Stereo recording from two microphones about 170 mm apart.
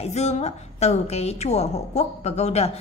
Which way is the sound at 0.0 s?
40° left (ahead or behind).